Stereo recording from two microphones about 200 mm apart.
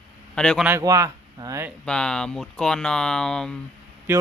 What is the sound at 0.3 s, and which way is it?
Speech, 5° left (ahead or behind).